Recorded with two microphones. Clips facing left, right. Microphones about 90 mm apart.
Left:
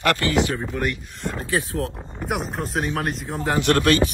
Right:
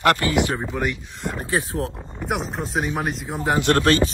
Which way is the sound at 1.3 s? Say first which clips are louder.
Even; 20° right (ahead or behind).